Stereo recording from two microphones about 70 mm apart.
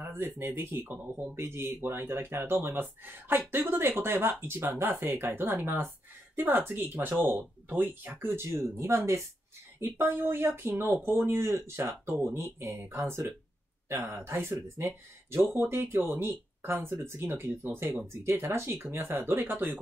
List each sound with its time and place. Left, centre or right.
0.0 s speech: right